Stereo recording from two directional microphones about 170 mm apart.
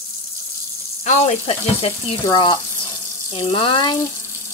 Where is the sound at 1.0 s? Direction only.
45° left (ahead or behind).